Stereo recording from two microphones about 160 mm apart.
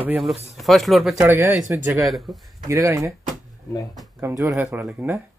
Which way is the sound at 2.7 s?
15° right (ahead or behind).